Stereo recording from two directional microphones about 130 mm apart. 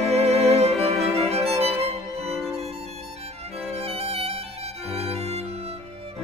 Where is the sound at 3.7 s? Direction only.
50° right (ahead or behind).